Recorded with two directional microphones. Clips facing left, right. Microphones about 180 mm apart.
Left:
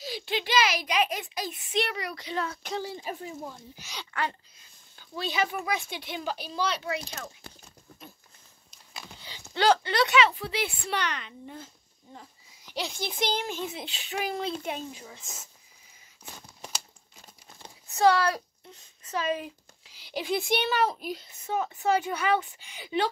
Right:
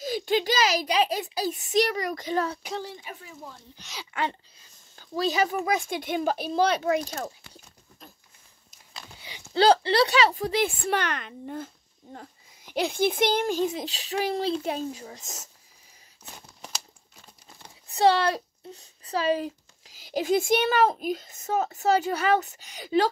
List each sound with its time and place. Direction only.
0.0 s a child's voice: 45° right (ahead or behind)
3.0 s speech: 35° left (ahead or behind)
3.4 s speech: 10° left (ahead or behind)
4.1 s speech: 20° right (ahead or behind)
4.6 s speech: 40° right (ahead or behind)
7.4 s a sound: 40° left (ahead or behind)
9.5 s a woman's voice: 30° right (ahead or behind); by 13.5 s 55° right (ahead or behind)
13.5 s speech: 40° right (ahead or behind)
17.9 s speech: 25° right (ahead or behind)